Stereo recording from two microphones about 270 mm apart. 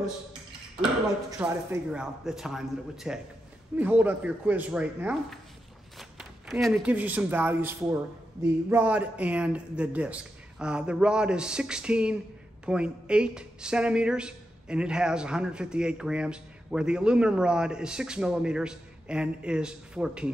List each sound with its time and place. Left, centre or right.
1.4 s a man's voice: centre